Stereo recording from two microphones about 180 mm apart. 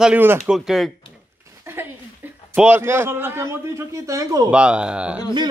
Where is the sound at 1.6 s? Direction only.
15° right (ahead or behind).